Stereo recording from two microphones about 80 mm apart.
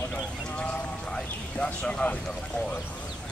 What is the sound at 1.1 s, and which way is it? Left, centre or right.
Speech, centre.